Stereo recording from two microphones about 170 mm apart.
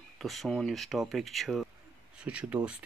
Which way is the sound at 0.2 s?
Centre (ahead or behind).